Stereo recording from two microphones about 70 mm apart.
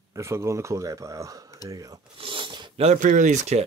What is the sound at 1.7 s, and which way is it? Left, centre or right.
Filing, right.